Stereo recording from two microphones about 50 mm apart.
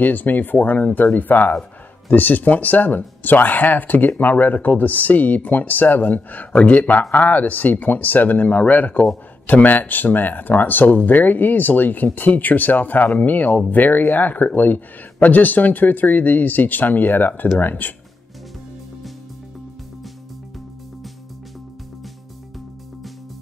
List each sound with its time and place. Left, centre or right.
0.0 s speech: left